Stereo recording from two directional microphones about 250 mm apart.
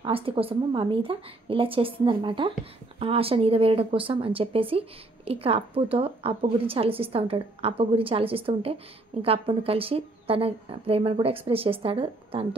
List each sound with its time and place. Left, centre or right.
0.0 s speech: right